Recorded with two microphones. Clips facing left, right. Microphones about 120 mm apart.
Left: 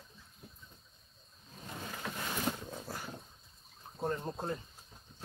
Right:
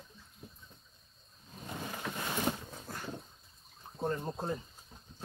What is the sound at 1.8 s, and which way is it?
Boat, 10° right (ahead or behind).